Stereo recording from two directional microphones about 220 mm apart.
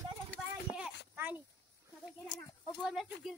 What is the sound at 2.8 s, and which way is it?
Speech, centre (ahead or behind).